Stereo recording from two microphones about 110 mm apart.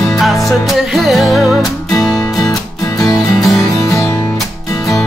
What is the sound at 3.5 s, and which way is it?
Music, 30° left (ahead or behind).